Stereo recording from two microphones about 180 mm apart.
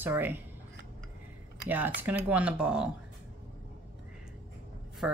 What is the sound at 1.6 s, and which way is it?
A woman's voice, 10° right (ahead or behind).